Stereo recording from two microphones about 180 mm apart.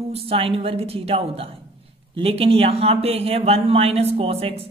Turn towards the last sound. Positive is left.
turn(degrees=-35)  # may be behind; listen again after turning